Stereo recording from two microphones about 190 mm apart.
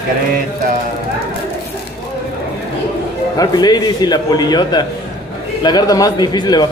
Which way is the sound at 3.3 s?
20° left (ahead or behind).